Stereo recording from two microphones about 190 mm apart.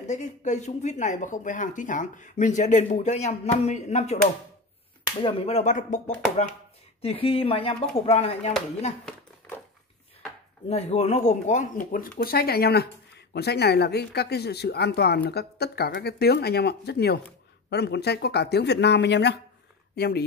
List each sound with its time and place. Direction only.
0.1 s speech: 40° left (ahead or behind)
5.2 s speech: 30° left (ahead or behind)
10.7 s speech: 35° left (ahead or behind); by 20.2 s 60° left (ahead or behind)